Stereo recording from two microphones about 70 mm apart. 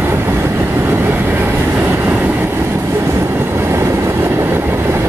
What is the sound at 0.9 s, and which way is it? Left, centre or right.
Train, right.